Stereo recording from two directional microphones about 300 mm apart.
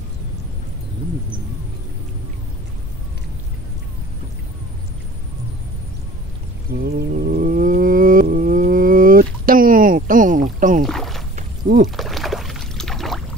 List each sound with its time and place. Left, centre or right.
6.7 s wild animals: right
10.8 s rowboat: centre
11.3 s a sound: right
12.0 s rowboat: centre